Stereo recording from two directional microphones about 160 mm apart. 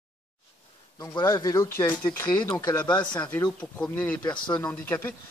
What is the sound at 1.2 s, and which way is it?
Speech, 20° left (ahead or behind).